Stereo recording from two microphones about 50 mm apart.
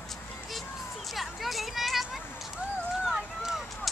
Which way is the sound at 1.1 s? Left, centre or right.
Centre.